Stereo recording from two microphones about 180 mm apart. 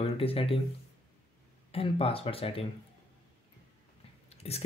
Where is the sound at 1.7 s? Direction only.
30° left (ahead or behind).